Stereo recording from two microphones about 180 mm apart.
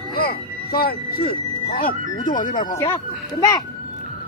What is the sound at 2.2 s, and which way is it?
Music, 45° left (ahead or behind).